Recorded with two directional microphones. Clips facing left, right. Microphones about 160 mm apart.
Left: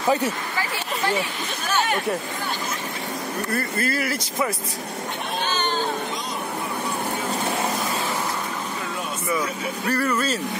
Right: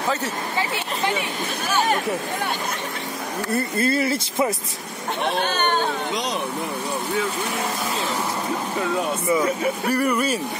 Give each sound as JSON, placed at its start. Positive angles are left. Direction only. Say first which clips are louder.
{"t": 3.5, "sound": "speech", "louder": "right 5 dB", "side_deg": -25}
{"t": 5.2, "sound": "chatter", "louder": "right 5 dB", "side_deg": -65}
{"t": 9.8, "sound": "speech", "louder": "even", "side_deg": -15}